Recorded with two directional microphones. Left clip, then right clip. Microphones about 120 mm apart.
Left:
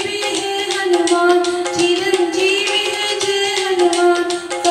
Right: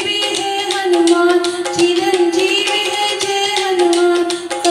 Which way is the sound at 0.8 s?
40° right (ahead or behind).